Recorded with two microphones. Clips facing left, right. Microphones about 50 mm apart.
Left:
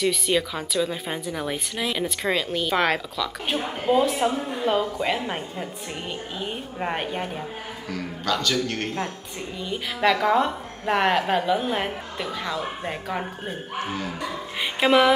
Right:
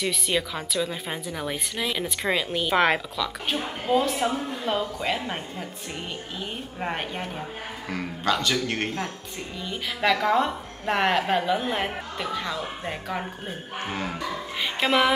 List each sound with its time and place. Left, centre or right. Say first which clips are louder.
0.0 s a woman's voice: left 4 dB; centre
3.4 s a woman's voice: left 5 dB; centre
7.9 s a man's voice: right 1 dB; right
9.6 s a woman's voice: left 3 dB; centre